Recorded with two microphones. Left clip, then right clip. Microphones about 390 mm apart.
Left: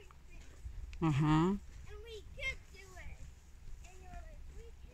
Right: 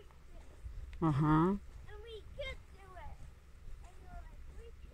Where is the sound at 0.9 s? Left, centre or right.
Centre.